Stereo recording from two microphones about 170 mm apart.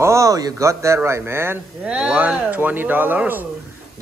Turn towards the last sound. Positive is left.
turn(degrees=-10)  # may be behind; listen again after turning